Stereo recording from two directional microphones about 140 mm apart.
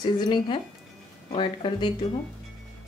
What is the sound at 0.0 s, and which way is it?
Speech, 30° left (ahead or behind).